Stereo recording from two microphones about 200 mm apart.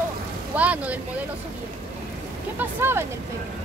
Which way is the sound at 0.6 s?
5° right (ahead or behind).